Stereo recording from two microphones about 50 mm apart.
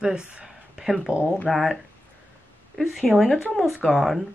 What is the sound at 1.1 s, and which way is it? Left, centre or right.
Speech, right.